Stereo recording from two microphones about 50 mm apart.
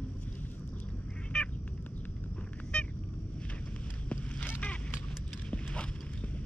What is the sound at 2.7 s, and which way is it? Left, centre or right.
Cat, centre.